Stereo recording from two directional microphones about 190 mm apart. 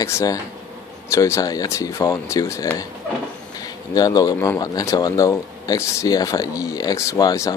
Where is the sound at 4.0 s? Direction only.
20° left (ahead or behind).